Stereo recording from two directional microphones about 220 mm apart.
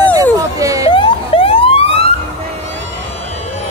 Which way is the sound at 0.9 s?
25° left (ahead or behind).